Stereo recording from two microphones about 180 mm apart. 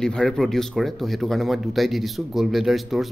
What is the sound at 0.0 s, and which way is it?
Speech, 5° left (ahead or behind).